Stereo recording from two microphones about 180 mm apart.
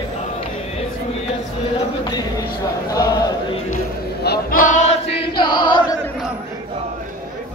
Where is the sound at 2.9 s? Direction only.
20° left (ahead or behind).